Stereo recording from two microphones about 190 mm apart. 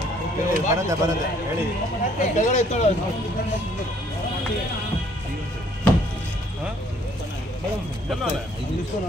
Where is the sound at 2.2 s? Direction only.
35° left (ahead or behind).